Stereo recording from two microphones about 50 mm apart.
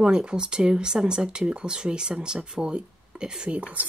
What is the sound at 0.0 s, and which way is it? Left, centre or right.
Speech, centre.